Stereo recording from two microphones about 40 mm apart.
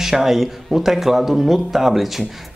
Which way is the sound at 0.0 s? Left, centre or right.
Centre.